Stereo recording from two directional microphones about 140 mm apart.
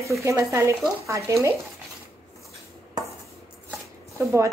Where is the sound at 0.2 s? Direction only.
20° right (ahead or behind).